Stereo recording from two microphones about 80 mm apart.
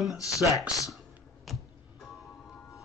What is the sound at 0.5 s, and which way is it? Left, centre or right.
Speech, left.